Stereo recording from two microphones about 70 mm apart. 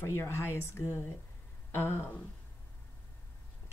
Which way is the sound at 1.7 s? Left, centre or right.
Left.